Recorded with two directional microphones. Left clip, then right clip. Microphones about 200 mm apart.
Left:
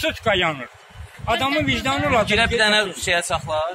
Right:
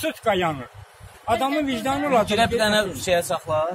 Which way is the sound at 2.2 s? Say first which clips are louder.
Left 2 dB; 45° right (ahead or behind).